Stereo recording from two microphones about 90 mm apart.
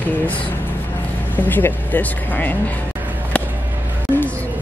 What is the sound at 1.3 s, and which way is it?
Speech, 20° left (ahead or behind).